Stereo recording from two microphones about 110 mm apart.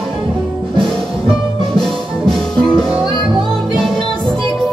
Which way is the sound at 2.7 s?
40° left (ahead or behind).